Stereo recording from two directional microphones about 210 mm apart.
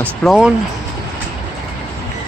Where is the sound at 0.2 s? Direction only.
Centre (ahead or behind).